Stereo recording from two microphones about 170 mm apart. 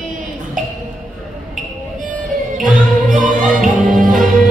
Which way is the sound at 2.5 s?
50° right (ahead or behind).